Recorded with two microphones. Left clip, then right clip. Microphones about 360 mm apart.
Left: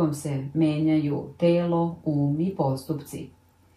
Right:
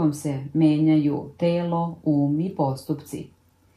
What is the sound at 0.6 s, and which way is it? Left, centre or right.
Mantra, centre.